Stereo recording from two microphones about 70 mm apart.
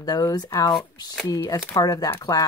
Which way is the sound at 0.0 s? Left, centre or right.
Left.